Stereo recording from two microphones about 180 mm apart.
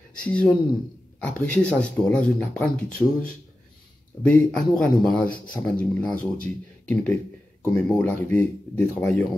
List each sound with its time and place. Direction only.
0.2 s speech: 5° left (ahead or behind)
4.2 s speech: 5° left (ahead or behind)